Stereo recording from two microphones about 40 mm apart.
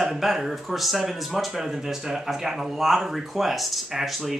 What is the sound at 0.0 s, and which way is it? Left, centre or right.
Speech, centre.